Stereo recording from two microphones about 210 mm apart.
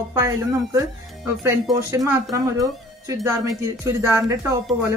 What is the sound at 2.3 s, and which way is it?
Speech, 15° right (ahead or behind).